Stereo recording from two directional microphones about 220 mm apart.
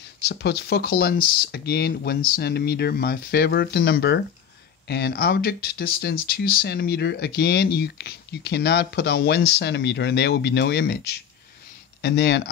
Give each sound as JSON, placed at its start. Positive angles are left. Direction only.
{"t": 0.2, "sound": "speech", "side_deg": 50}